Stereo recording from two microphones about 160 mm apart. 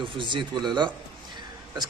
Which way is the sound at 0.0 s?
30° right (ahead or behind).